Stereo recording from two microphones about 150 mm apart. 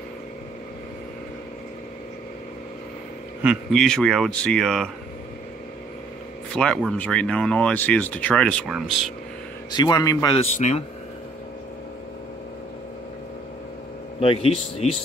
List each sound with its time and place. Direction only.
3.4 s speech: 5° left (ahead or behind)
6.5 s speech: 5° left (ahead or behind)
9.7 s a man's voice: 30° left (ahead or behind)
10.3 s speech: 45° left (ahead or behind)
14.2 s speech: 40° left (ahead or behind)